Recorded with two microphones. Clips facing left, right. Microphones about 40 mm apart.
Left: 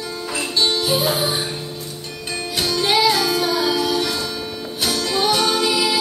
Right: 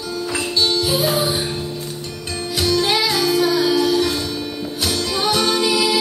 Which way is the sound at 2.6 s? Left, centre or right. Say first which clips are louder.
Even; centre.